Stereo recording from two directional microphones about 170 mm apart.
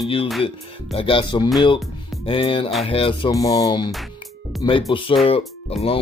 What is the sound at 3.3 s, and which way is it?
Speech, 20° left (ahead or behind).